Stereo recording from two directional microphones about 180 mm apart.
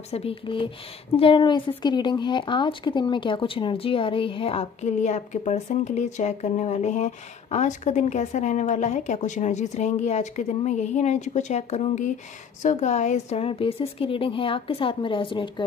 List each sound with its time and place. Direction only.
0.1 s a woman's voice: 30° left (ahead or behind)